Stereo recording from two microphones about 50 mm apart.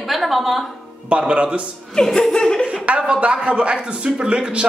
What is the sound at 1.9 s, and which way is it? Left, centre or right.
Speech, centre.